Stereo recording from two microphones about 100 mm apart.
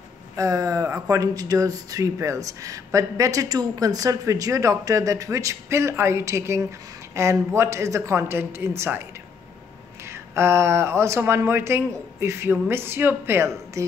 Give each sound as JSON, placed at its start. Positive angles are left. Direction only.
{"t": 0.4, "sound": "speech", "side_deg": -35}
{"t": 10.0, "sound": "speech", "side_deg": -25}